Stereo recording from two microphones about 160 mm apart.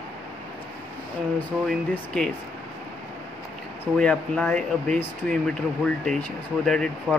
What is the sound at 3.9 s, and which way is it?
Speech, 5° left (ahead or behind).